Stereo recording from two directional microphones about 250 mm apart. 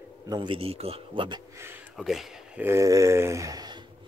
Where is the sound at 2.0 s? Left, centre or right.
Centre.